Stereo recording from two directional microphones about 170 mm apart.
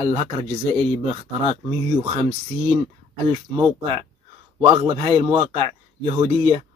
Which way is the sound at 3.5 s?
25° right (ahead or behind).